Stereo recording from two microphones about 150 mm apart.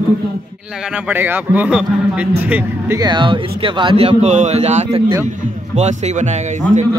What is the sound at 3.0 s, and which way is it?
Speech, 30° right (ahead or behind).